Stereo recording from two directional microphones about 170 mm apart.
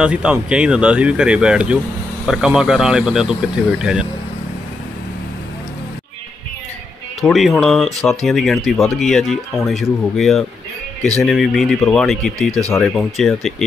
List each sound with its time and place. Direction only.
0.0 s speech: 5° right (ahead or behind)
7.2 s speech: centre (ahead or behind)